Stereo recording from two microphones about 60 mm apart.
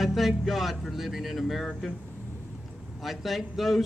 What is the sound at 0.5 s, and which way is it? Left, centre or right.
Speech, centre.